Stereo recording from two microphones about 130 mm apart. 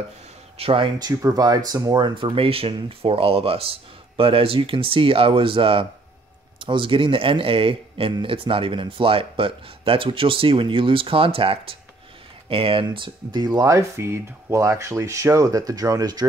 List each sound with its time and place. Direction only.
0.6 s speech: 45° right (ahead or behind)